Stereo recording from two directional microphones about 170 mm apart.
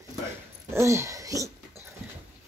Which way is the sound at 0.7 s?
15° right (ahead or behind).